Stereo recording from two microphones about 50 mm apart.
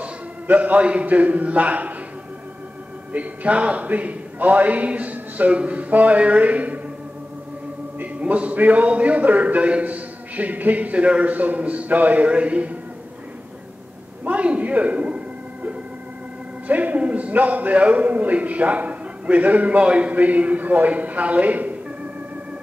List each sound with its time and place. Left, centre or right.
0.0 s a man's voice: right
3.1 s a man's voice: right
8.0 s a man's voice: right
14.2 s a sound: right
16.6 s a man's voice: right